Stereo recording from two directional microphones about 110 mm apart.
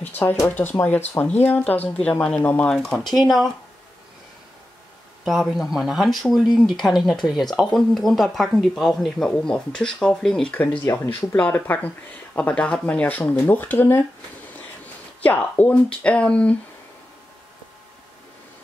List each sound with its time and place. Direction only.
0.0 s speech: 20° left (ahead or behind); by 3.5 s centre (ahead or behind)
5.2 s speech: centre (ahead or behind); by 14.0 s 15° left (ahead or behind)
15.2 s speech: 15° left (ahead or behind)